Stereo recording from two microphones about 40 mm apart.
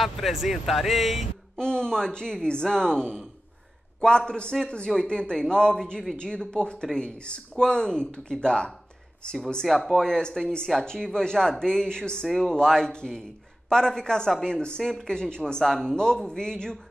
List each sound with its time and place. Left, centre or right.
0.0 s speech: centre
1.6 s speech: centre
4.3 s speech: left
9.7 s speech: centre
9.9 s speech: centre
12.3 s speech: centre
14.8 s speech: centre
15.0 s speech: centre